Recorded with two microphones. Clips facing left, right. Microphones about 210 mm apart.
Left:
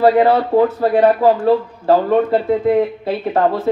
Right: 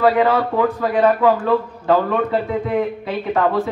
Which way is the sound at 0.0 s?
35° left (ahead or behind).